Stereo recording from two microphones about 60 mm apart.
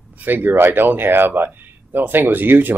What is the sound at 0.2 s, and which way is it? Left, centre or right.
Speech, right.